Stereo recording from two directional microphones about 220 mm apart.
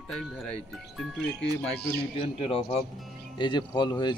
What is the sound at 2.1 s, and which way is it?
A man's voice, 25° left (ahead or behind).